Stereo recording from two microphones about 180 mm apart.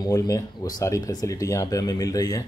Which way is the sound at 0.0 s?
20° left (ahead or behind).